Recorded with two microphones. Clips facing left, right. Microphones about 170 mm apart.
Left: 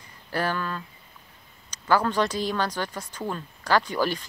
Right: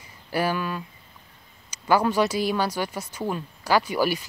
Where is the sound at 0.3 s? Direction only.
10° right (ahead or behind).